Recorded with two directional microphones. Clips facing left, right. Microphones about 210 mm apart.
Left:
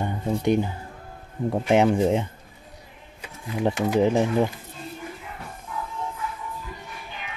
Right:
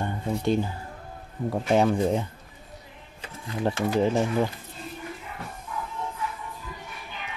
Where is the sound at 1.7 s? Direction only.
20° left (ahead or behind).